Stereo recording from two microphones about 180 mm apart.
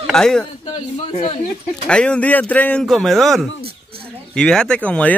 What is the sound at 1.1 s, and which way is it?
Speech, 35° left (ahead or behind).